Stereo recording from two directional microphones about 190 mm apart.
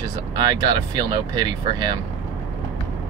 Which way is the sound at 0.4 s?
20° right (ahead or behind).